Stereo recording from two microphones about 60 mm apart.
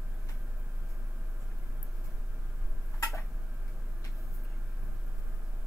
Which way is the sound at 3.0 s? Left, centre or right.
Left.